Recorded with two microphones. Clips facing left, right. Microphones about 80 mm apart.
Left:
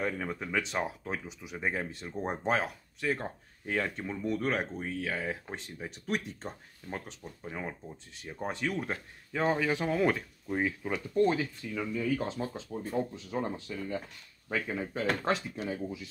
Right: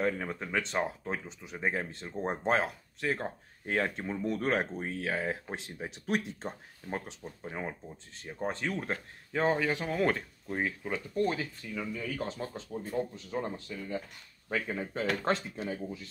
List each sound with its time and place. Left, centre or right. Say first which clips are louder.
0.2 s speech: left 1 dB; centre
5.9 s speech: right 2 dB; centre
8.4 s speech: even; centre
11.1 s speech: left 4 dB; left
11.7 s speech: left 6 dB; centre
12.6 s speech: left 1 dB; centre
12.9 s speech: left 1 dB; centre